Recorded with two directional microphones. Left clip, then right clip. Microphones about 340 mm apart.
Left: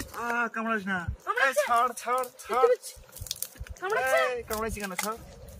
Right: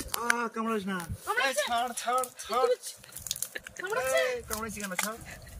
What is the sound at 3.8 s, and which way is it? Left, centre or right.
Speech, centre.